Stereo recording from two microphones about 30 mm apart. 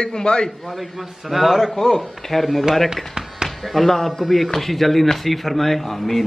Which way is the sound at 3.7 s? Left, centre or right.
Centre.